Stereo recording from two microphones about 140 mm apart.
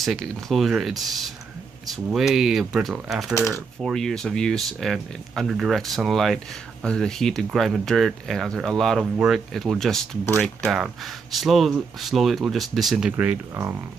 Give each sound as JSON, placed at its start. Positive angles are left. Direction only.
{"t": 0.0, "sound": "speech", "side_deg": 0}
{"t": 3.3, "sound": "speech", "side_deg": 20}
{"t": 3.8, "sound": "speech", "side_deg": 5}
{"t": 13.1, "sound": "speech", "side_deg": -15}